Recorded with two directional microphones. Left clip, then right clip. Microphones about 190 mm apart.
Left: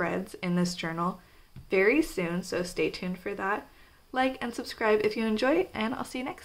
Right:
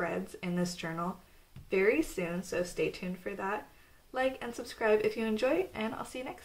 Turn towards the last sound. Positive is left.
turn(degrees=40)  # may be behind; listen again after turning